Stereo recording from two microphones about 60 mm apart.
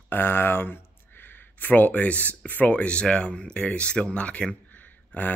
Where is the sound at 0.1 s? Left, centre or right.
Left.